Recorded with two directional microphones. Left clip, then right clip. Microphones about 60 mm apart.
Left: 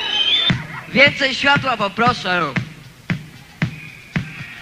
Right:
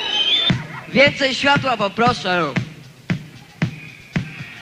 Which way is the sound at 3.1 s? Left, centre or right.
Right.